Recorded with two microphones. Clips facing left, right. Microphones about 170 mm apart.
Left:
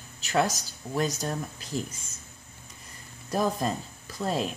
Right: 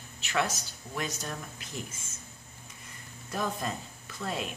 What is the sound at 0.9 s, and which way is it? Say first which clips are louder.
Speech: left 7 dB; 35° left (ahead or behind).